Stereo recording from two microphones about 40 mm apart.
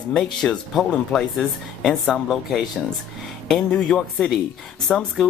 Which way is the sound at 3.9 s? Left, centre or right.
Centre.